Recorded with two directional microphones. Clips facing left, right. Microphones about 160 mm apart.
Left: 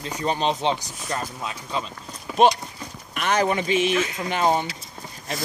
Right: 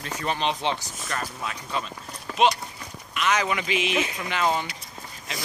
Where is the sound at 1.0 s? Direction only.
20° left (ahead or behind).